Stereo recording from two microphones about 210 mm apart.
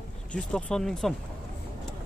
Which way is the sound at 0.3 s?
5° left (ahead or behind).